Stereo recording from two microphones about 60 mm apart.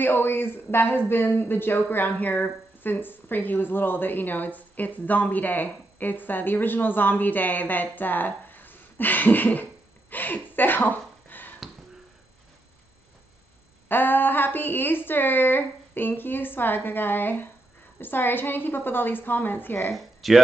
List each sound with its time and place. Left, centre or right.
0.0 s speech: left
13.8 s speech: left
19.9 s speech: centre